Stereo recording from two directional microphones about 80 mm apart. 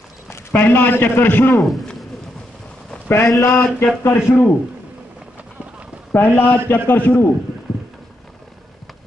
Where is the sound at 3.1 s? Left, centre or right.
Left.